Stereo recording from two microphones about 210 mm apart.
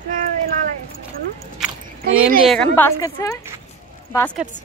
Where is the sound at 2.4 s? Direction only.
5° left (ahead or behind).